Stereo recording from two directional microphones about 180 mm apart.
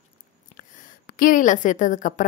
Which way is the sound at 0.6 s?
50° left (ahead or behind).